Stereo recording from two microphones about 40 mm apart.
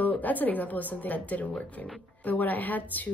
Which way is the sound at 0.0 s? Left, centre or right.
Left.